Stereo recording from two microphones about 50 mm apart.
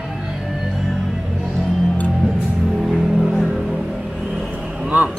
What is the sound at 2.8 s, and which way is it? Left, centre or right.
Music, centre.